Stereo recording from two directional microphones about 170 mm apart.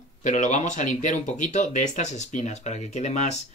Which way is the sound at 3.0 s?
40° left (ahead or behind).